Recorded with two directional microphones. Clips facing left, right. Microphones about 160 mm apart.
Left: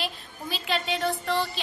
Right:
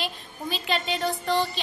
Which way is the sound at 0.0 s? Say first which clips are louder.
Right 2 dB; centre (ahead or behind).